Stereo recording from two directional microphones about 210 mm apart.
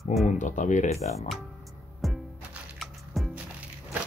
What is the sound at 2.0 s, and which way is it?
Music, centre (ahead or behind).